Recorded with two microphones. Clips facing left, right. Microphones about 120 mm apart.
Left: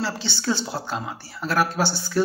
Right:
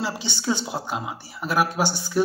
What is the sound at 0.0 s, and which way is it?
Speech, 15° right (ahead or behind).